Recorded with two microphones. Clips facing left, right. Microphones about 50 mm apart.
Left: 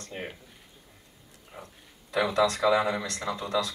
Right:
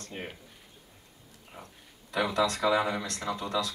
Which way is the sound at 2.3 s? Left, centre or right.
Left.